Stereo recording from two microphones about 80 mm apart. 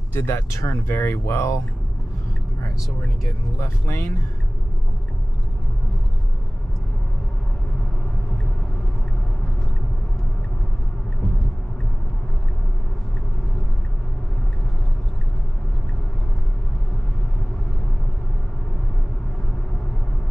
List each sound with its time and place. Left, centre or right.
0.1 s speech: left
3.5 s speech: left